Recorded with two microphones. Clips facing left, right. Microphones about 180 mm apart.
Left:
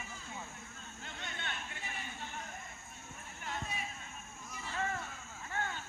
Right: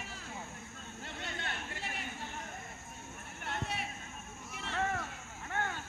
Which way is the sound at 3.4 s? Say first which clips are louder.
Right 3 dB; 65° right (ahead or behind).